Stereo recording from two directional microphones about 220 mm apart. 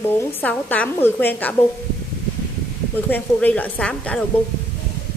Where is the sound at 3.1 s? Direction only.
5° left (ahead or behind).